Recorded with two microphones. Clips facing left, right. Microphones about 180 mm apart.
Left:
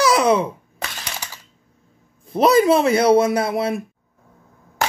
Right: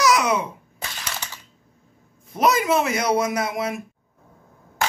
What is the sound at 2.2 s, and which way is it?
Speech, 30° left (ahead or behind).